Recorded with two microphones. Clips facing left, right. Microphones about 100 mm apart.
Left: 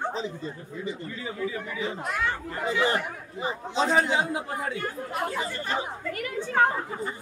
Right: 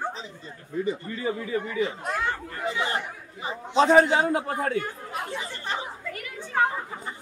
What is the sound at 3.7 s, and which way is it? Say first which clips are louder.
A man's voice: right 6 dB; 50° right (ahead or behind).